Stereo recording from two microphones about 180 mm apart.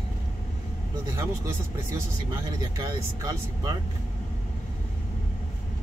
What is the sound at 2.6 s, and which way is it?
Speech, 20° right (ahead or behind).